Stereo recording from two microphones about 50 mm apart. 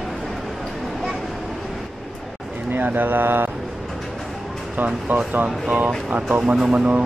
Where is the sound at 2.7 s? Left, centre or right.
Right.